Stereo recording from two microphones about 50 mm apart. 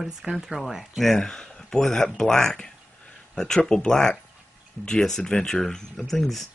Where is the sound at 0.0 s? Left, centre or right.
Centre.